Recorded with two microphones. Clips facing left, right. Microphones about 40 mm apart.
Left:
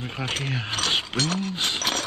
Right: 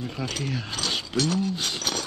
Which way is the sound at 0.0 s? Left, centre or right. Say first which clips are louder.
Left 1 dB; left.